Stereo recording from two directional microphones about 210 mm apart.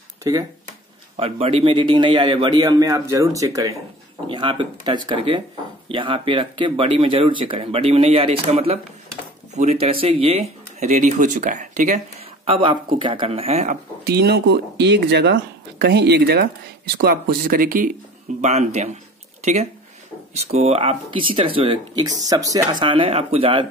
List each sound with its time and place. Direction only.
0.2 s speech: 15° right (ahead or behind)
1.1 s speech: 25° right (ahead or behind)
12.4 s speech: 25° right (ahead or behind)
14.0 s speech: 50° right (ahead or behind); by 23.7 s 25° right (ahead or behind)